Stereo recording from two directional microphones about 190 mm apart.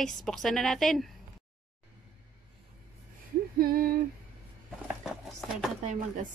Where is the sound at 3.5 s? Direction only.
50° right (ahead or behind).